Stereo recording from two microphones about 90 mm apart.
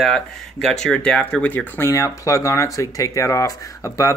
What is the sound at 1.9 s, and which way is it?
Speech, 35° left (ahead or behind).